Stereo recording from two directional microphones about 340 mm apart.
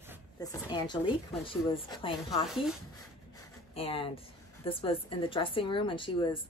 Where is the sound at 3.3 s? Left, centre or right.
Centre.